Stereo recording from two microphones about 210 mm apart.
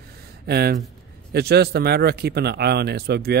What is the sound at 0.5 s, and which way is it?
Speech, 50° right (ahead or behind).